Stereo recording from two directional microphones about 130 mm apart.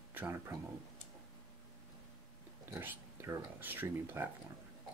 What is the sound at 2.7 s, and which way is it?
Speech, 20° right (ahead or behind).